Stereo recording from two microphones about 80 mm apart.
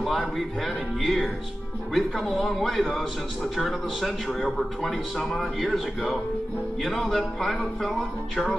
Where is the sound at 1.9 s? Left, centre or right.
Centre.